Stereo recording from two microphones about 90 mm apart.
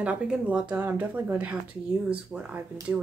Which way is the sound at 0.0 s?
15° right (ahead or behind).